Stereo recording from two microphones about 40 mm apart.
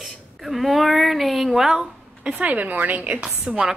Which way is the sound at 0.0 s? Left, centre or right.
Centre.